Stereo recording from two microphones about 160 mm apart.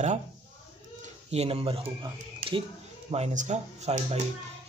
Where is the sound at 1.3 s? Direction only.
35° right (ahead or behind).